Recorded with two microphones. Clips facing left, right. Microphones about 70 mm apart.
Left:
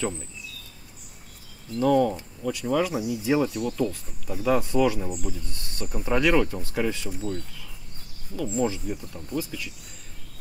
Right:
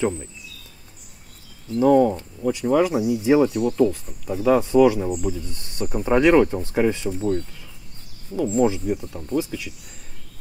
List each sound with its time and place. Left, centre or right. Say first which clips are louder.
1.8 s speech: right 5 dB; centre
5.4 s speech: right 6 dB; right
8.5 s speech: right 6 dB; centre